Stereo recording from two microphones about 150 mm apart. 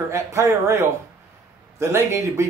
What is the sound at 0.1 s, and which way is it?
A man's voice, 20° right (ahead or behind).